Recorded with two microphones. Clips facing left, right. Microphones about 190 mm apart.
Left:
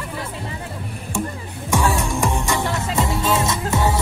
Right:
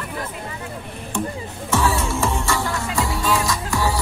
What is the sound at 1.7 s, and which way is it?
Music, 15° left (ahead or behind).